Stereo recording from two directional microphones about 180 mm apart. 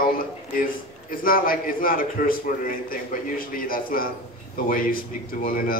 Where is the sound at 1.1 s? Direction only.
50° left (ahead or behind).